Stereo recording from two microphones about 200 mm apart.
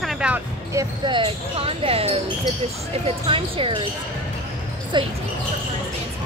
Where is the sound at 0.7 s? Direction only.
25° right (ahead or behind).